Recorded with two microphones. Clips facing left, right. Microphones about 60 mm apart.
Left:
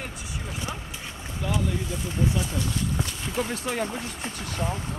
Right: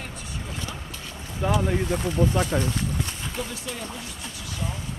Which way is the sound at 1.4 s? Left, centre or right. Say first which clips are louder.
Right 5 dB; right.